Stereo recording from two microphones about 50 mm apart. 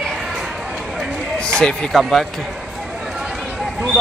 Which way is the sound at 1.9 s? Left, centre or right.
Centre.